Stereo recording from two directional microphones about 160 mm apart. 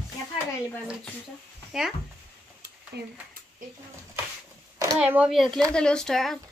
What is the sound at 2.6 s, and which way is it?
Stir, 90° right.